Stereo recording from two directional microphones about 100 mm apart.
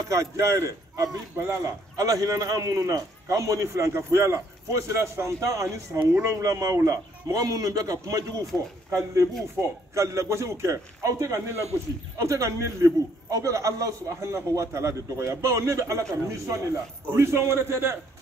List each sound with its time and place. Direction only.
0.1 s a man's voice: 30° right (ahead or behind)